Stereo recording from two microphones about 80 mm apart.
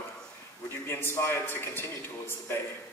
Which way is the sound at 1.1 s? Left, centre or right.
Left.